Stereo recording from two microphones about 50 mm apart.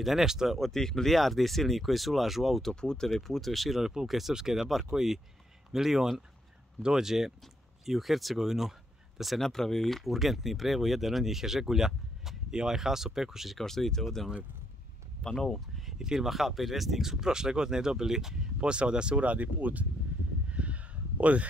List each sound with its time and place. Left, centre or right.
0.0 s speech: centre
0.6 s speech: centre
2.7 s speech: centre
3.2 s speech: centre
13.6 s speech: centre
16.0 s speech: centre; by 19.9 s right
20.4 s a sound: right